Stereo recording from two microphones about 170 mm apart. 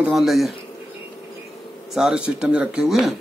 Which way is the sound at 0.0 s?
Centre (ahead or behind).